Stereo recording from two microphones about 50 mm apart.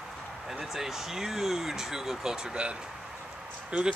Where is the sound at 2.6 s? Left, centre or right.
Right.